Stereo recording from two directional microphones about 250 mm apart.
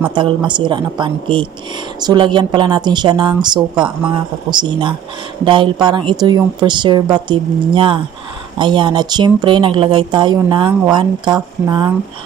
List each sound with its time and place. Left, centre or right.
0.1 s a woman's voice: centre